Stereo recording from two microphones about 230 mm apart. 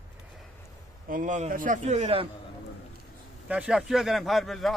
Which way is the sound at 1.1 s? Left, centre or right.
Right.